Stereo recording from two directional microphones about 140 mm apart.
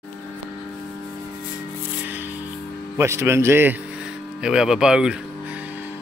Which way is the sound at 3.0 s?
20° right (ahead or behind).